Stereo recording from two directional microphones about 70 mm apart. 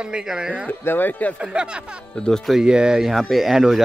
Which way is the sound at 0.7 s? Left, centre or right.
Left.